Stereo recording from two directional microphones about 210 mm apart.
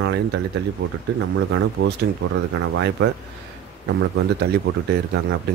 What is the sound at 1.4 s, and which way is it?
Speech, 65° right (ahead or behind).